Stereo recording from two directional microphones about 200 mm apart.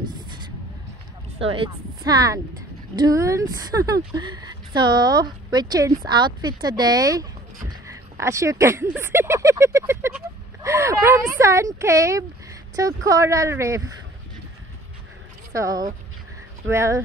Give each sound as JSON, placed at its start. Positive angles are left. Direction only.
{"t": 1.4, "sound": "speech", "side_deg": -25}
{"t": 15.5, "sound": "speech", "side_deg": -15}